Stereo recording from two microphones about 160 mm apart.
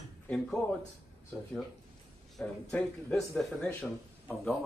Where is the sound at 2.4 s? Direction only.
5° left (ahead or behind).